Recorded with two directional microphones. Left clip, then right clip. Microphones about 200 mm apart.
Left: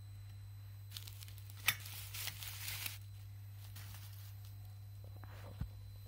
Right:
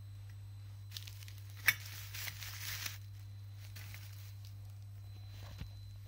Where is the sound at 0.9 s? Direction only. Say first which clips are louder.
Right 2 dB; 25° right (ahead or behind).